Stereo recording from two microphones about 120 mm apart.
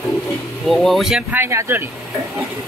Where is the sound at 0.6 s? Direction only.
Centre (ahead or behind).